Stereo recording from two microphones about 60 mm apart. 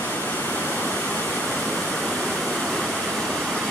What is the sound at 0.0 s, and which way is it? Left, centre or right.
Waterfall, left.